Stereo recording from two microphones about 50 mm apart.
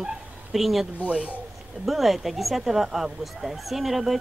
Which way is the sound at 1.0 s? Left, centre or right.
Right.